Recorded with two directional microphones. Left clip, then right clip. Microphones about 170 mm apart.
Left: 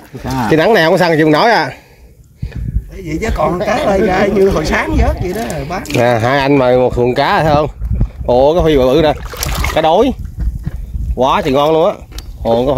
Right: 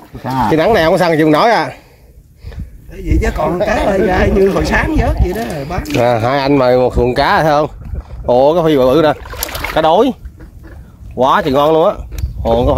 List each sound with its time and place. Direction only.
0.2 s speech: centre (ahead or behind)
0.5 s speech: 20° left (ahead or behind)
2.5 s a sound: 5° left (ahead or behind)
3.6 s speech: 5° left (ahead or behind)
9.5 s boat: 50° left (ahead or behind)
9.8 s speech: centre (ahead or behind)
11.1 s speech: centre (ahead or behind)